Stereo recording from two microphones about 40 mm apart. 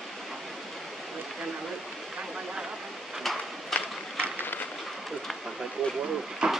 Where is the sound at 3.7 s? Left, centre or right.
Centre.